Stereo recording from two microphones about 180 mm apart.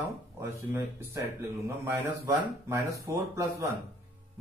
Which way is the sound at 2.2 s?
15° right (ahead or behind).